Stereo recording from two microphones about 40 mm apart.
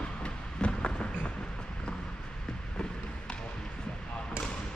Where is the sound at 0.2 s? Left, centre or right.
Left.